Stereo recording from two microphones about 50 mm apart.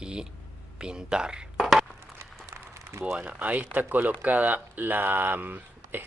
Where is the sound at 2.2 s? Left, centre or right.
Right.